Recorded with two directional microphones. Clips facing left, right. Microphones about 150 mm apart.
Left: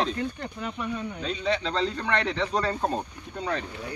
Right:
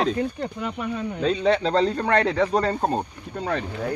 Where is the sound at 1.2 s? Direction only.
45° right (ahead or behind).